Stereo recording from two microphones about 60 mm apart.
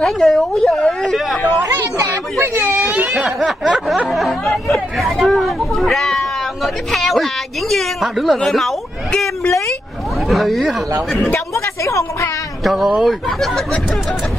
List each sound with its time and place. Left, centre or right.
0.0 s speech: centre
1.3 s speech: left
2.4 s whimper: right
2.9 s baby cry: right
3.3 s speech: centre
10.2 s speech: centre
11.1 s speech: left
11.5 s a woman's voice: left
12.6 s speech: centre